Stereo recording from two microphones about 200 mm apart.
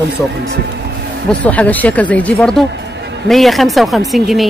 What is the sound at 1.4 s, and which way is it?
Speech, 5° left (ahead or behind).